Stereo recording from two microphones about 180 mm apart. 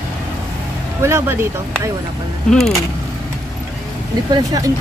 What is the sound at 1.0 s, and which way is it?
Speech, 15° right (ahead or behind).